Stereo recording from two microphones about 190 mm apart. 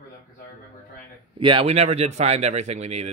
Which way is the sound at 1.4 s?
30° right (ahead or behind).